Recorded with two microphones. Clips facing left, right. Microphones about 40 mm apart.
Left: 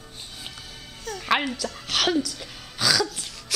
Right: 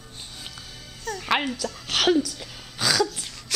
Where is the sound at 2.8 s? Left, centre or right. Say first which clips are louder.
Even; centre.